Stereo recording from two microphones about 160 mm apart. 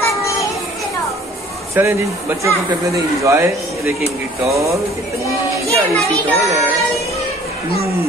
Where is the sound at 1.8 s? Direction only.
10° right (ahead or behind).